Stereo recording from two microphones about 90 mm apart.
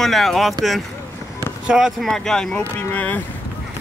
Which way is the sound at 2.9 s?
15° left (ahead or behind).